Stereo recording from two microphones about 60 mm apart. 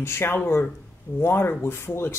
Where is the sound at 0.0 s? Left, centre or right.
Left.